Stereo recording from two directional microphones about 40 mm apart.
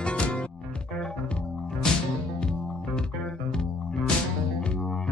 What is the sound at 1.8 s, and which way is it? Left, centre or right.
Music, centre.